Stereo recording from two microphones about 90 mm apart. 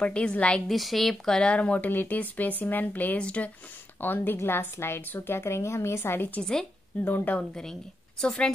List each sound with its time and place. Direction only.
0.0 s speech: 10° left (ahead or behind)
0.7 s a woman's voice: centre (ahead or behind); by 6.4 s 25° left (ahead or behind)
6.4 s speech: 5° left (ahead or behind)
7.0 s a woman's voice: 20° left (ahead or behind)
8.2 s speech: 10° left (ahead or behind)